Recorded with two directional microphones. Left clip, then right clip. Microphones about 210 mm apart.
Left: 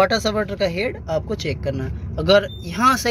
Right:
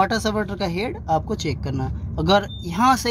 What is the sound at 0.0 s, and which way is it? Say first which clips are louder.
Speech: left 3 dB; 20° right (ahead or behind).